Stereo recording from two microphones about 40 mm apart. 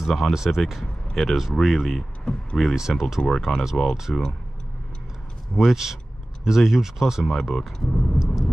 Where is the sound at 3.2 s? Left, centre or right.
Left.